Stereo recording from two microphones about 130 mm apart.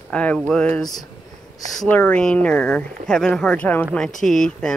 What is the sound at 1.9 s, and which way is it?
Speech, 10° left (ahead or behind).